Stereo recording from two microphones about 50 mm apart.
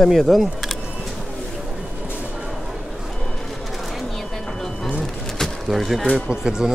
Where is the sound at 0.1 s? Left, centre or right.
Centre.